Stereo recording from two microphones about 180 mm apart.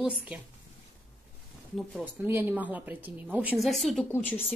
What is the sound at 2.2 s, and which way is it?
Speech, 10° right (ahead or behind).